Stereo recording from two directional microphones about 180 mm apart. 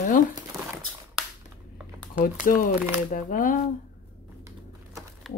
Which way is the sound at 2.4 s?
50° left (ahead or behind).